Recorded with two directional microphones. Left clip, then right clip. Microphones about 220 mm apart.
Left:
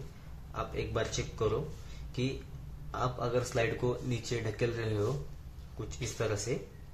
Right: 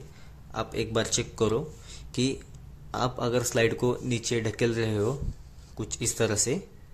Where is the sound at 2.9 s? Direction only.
45° right (ahead or behind).